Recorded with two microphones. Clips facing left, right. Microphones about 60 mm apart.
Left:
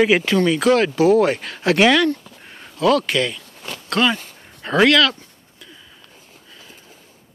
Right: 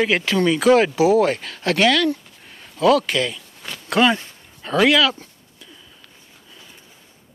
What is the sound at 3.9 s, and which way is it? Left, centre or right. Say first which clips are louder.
Speech: right 2 dB; centre.